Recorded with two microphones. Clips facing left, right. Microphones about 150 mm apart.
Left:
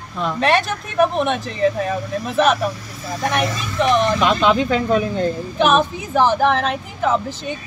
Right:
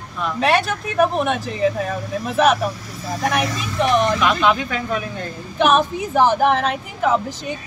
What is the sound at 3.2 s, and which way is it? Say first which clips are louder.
Speech: left 1 dB; 5° right (ahead or behind).